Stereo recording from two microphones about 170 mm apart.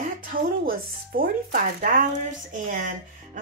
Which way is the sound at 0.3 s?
60° right (ahead or behind).